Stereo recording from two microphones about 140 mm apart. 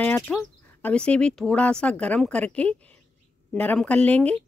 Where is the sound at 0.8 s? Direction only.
10° left (ahead or behind).